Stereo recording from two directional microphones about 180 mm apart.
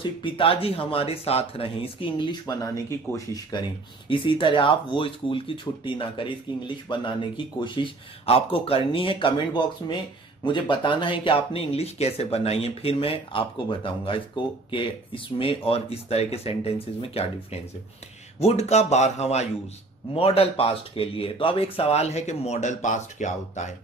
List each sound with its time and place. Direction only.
0.0 s speech: 30° left (ahead or behind)
4.1 s speech: 30° left (ahead or behind)